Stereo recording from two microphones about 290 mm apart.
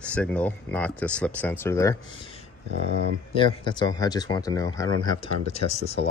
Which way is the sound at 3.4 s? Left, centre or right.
Centre.